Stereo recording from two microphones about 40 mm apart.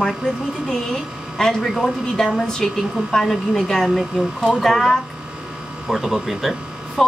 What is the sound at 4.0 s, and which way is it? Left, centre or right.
Speech, centre.